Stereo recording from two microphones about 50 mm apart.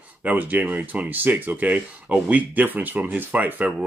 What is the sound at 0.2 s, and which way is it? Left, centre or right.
Speech, right.